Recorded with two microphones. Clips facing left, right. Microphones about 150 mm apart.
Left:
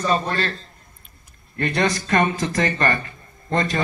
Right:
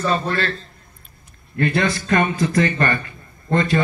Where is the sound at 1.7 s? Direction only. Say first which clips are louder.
Left 1 dB; 40° left (ahead or behind).